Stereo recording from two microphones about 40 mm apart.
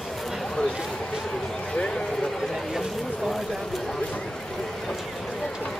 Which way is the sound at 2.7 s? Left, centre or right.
Centre.